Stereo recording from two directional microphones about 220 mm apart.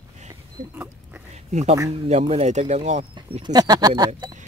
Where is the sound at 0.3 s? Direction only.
10° right (ahead or behind).